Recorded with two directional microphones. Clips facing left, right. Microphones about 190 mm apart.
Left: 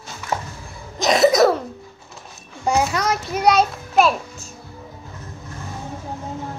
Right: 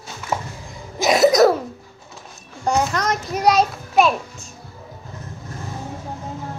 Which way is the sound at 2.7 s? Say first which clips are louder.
Even; 5° left (ahead or behind).